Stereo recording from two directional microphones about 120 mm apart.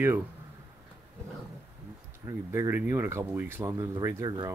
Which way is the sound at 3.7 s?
35° right (ahead or behind).